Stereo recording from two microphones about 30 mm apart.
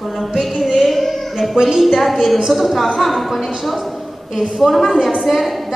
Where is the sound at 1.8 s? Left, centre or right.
Centre.